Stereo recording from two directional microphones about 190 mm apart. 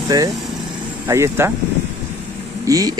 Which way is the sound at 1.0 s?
15° right (ahead or behind).